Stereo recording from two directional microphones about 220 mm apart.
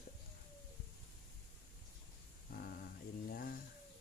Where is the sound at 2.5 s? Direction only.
45° left (ahead or behind).